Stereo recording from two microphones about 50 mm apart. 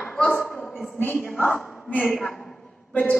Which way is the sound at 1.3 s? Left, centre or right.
Left.